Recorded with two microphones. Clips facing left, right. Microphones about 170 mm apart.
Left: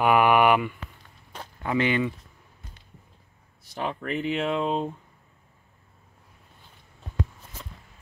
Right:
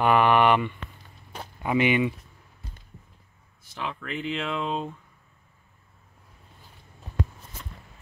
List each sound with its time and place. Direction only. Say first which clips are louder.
0.0 s a sound: left 1 dB; 10° left (ahead or behind)
1.4 s speech: right 2 dB; 15° right (ahead or behind)
3.7 s speech: left 4 dB; 40° left (ahead or behind)